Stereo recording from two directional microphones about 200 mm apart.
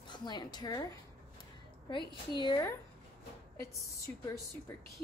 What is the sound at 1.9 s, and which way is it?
Speech, 25° left (ahead or behind).